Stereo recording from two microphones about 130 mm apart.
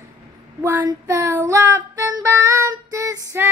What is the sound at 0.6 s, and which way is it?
Female singing, 20° right (ahead or behind).